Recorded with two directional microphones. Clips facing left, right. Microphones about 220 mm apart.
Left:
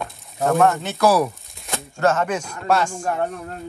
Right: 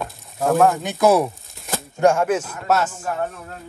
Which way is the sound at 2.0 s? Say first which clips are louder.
Right 3 dB; 10° right (ahead or behind).